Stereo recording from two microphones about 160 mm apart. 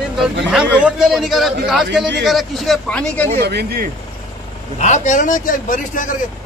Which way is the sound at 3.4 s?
85° right.